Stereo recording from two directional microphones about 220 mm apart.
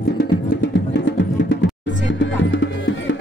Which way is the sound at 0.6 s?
55° left (ahead or behind).